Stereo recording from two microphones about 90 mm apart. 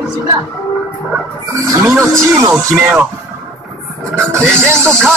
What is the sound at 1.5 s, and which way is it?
Speech, 35° right (ahead or behind).